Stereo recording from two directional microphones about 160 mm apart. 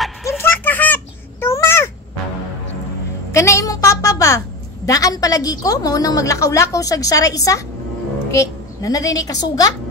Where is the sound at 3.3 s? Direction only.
20° left (ahead or behind).